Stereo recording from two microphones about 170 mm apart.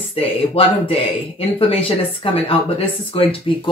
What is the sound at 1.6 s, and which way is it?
Speech, 35° left (ahead or behind).